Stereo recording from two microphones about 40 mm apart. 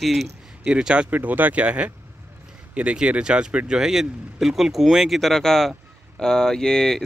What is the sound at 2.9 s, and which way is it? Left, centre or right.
Speech, right.